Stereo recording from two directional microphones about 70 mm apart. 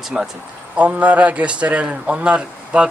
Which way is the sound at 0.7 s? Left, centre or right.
Right.